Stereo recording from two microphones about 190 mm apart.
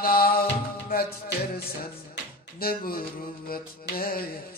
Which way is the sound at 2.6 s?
50° left (ahead or behind).